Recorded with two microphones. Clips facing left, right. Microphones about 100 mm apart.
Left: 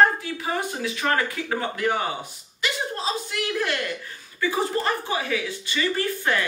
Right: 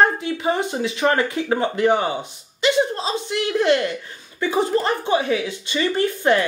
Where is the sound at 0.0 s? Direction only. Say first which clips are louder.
Right 2 dB; 25° right (ahead or behind).